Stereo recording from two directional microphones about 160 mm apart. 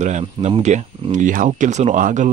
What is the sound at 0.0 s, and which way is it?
Speech, 45° right (ahead or behind).